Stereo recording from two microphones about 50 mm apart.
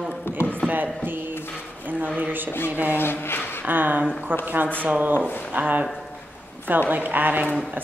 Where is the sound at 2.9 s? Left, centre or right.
Left.